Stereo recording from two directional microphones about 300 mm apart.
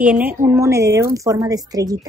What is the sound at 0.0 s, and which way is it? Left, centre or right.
A woman's voice, centre.